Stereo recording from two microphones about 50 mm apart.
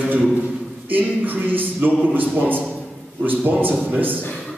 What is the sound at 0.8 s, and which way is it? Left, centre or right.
Speech, right.